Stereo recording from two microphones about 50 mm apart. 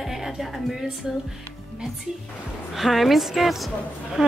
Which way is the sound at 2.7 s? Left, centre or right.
Centre.